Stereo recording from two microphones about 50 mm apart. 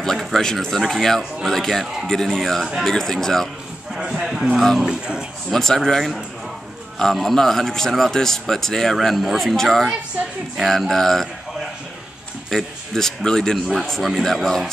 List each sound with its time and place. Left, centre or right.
0.0 s speech: centre
3.9 s speech: centre
4.6 s speech: centre
4.8 s speech: centre
5.5 s speech: centre
12.4 s speech: centre
13.8 s speech: centre